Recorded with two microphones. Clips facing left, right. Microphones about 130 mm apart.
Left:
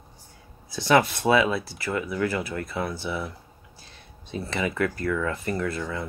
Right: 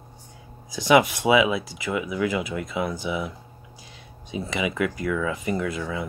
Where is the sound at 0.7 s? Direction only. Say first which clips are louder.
Right 2 dB; 15° right (ahead or behind).